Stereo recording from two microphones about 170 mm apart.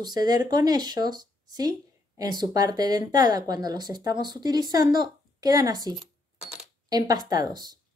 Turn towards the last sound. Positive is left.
turn(degrees=-25)  # may be behind; listen again after turning